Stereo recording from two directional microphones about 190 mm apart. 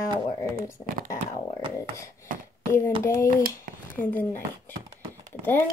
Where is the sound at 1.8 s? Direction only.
15° left (ahead or behind).